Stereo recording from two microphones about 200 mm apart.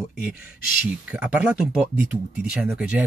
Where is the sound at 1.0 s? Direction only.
5° right (ahead or behind).